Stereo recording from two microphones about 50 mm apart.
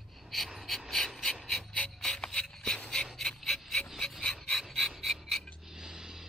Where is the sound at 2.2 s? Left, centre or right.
Left.